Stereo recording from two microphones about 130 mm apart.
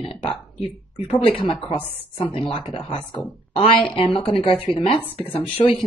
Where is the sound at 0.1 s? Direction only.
45° left (ahead or behind).